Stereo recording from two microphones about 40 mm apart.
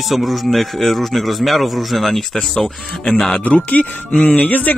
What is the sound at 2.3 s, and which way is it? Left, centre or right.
Speech, centre.